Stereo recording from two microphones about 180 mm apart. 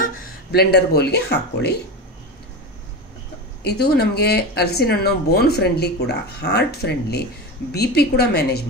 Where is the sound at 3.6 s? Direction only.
65° left (ahead or behind).